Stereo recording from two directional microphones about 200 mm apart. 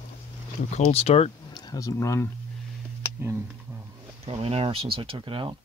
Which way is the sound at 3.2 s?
10° right (ahead or behind).